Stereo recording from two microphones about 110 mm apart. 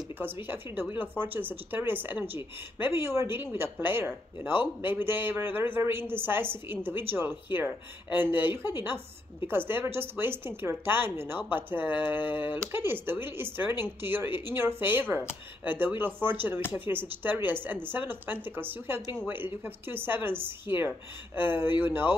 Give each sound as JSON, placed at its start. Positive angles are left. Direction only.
{"t": 0.2, "sound": "speech", "side_deg": -20}